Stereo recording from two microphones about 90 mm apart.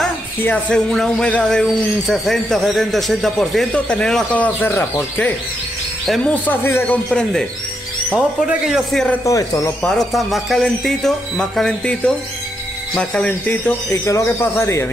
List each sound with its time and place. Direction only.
0.7 s a man's voice: 10° left (ahead or behind)
4.3 s speech: 15° left (ahead or behind)
7.1 s a man's voice: 5° left (ahead or behind)
8.1 s speech: 15° right (ahead or behind)
9.2 s speech: 40° left (ahead or behind)
9.8 s a man's voice: 5° left (ahead or behind)
14.0 s speech: 30° left (ahead or behind)